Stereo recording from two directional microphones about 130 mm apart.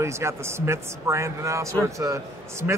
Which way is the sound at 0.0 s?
20° right (ahead or behind).